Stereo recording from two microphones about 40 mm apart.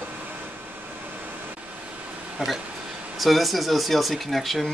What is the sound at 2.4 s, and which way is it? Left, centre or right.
Speech, centre.